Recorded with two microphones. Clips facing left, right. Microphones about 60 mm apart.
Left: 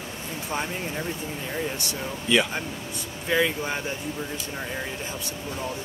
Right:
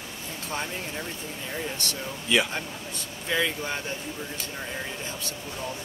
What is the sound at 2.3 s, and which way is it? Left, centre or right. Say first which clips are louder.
Speech: left 2 dB; centre.